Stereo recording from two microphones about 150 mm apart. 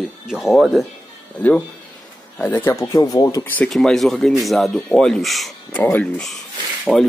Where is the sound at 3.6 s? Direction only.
5° left (ahead or behind).